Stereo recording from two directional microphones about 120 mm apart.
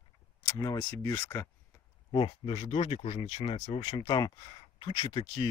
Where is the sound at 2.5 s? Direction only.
55° left (ahead or behind); by 4.9 s 35° left (ahead or behind).